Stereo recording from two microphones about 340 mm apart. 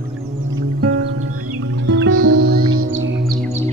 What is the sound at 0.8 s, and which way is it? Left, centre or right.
Music, right.